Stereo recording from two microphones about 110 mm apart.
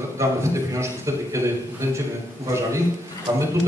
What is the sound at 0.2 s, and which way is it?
A man's voice, 25° right (ahead or behind).